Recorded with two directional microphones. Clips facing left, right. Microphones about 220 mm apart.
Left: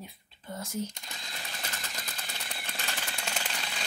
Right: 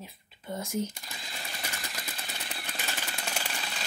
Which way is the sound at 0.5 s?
10° right (ahead or behind).